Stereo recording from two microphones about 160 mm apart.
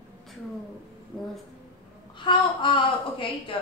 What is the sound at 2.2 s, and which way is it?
A woman's voice, 30° left (ahead or behind).